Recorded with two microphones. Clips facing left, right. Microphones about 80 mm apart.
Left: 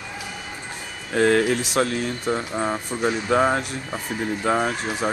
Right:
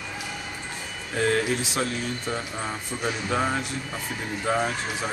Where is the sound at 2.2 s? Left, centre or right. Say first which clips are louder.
Left 6 dB; left.